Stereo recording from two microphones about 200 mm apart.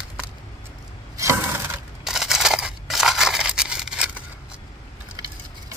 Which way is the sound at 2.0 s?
Centre (ahead or behind).